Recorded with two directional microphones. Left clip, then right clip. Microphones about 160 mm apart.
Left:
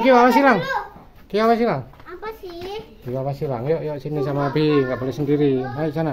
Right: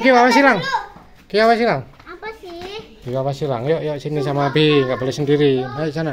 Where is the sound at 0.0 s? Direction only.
Centre (ahead or behind).